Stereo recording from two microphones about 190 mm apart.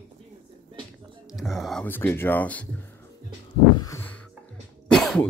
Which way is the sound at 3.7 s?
15° left (ahead or behind).